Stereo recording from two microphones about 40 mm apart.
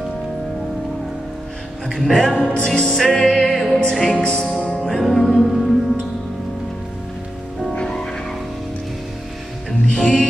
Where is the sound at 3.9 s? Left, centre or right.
Centre.